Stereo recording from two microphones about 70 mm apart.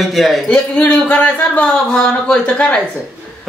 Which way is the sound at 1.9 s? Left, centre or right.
Centre.